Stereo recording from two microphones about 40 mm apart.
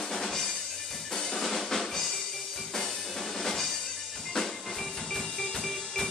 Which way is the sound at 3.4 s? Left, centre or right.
Centre.